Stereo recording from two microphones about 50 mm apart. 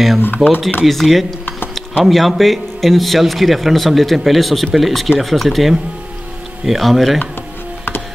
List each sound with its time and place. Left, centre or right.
0.2 s speech: left
0.8 s a man's voice: centre